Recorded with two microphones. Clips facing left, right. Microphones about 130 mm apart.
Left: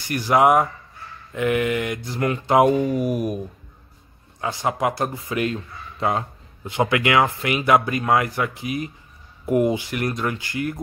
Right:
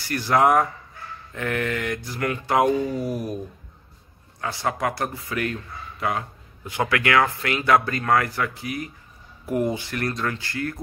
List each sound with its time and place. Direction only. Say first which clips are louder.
0.0 s speech: left 2 dB; 15° left (ahead or behind)
4.4 s speech: left 3 dB; 20° left (ahead or behind)